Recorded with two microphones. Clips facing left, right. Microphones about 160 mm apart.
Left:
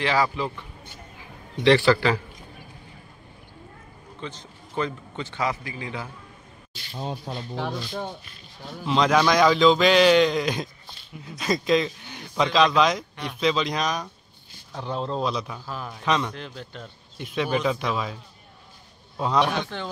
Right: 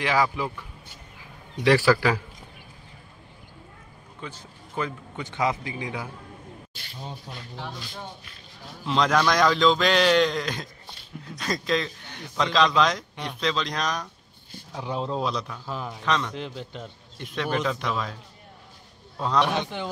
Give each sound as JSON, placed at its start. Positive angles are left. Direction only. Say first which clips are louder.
{"t": 0.0, "sound": "a man's voice", "louder": "left 1 dB", "side_deg": -10}
{"t": 1.6, "sound": "a man's voice", "louder": "left 1 dB", "side_deg": -10}
{"t": 4.2, "sound": "a man's voice", "louder": "left 2 dB", "side_deg": -10}
{"t": 7.0, "sound": "speech", "louder": "left 7 dB", "side_deg": 85}
{"t": 8.8, "sound": "a man's voice", "louder": "left 2 dB", "side_deg": 5}
{"t": 14.7, "sound": "a man's voice", "louder": "even", "side_deg": -10}
{"t": 15.2, "sound": "a man's voice", "louder": "left 1 dB", "side_deg": 5}
{"t": 15.6, "sound": "a man's voice", "louder": "right 1 dB", "side_deg": -20}
{"t": 16.0, "sound": "a man's voice", "louder": "left 3 dB", "side_deg": 10}
{"t": 16.3, "sound": "a man's voice", "louder": "right 3 dB", "side_deg": -20}
{"t": 17.2, "sound": "a man's voice", "louder": "left 2 dB", "side_deg": 5}
{"t": 19.1, "sound": "a man's voice", "louder": "left 1 dB", "side_deg": 10}
{"t": 19.5, "sound": "a man's voice", "louder": "right 1 dB", "side_deg": -20}